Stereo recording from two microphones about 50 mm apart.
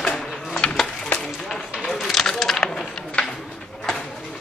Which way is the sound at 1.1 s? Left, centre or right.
Centre.